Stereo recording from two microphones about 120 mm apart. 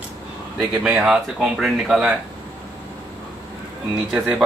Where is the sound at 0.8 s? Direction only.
5° right (ahead or behind).